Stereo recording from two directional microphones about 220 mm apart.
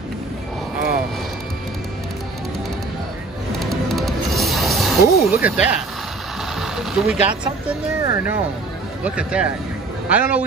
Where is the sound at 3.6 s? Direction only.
Centre (ahead or behind).